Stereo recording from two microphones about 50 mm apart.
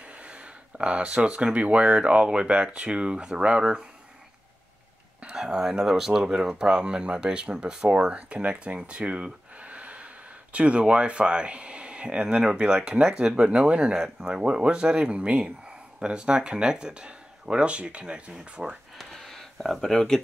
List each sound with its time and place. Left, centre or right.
0.0 s speech: right
5.2 s speech: centre
18.9 s a sound: centre